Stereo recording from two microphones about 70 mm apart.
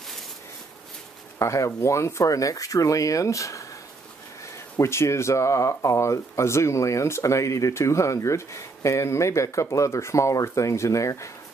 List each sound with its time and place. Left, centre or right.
1.4 s speech: left
4.7 s speech: left